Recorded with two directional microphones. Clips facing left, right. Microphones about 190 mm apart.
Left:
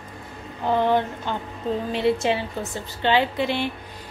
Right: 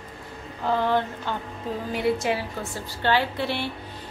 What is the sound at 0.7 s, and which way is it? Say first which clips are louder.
A woman's voice: left 3 dB; 15° left (ahead or behind).